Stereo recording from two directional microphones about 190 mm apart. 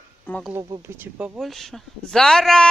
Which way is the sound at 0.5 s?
20° right (ahead or behind).